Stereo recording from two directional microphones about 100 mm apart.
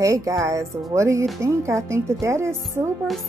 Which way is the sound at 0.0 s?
35° right (ahead or behind).